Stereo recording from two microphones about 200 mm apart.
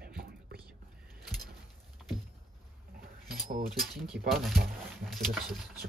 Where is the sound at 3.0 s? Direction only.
45° right (ahead or behind).